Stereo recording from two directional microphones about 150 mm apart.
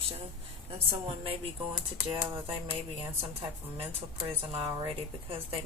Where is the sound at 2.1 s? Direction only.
35° right (ahead or behind).